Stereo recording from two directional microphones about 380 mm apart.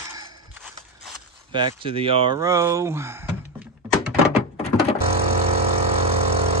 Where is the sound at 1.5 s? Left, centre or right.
Centre.